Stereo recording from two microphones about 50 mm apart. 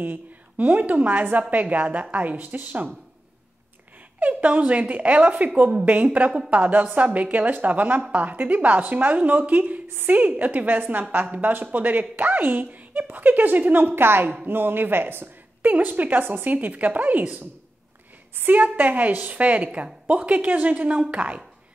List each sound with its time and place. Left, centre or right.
0.0 s a woman's voice: right
4.2 s a woman's voice: right
9.8 s a woman's voice: right
10.1 s speech: right
18.3 s a woman's voice: right
18.6 s a woman's voice: right